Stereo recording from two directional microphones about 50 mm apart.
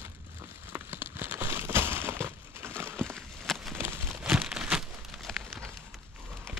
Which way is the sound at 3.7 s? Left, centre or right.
Right.